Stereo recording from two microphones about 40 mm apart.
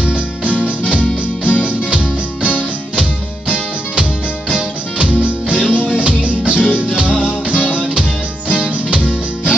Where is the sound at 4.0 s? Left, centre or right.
Right.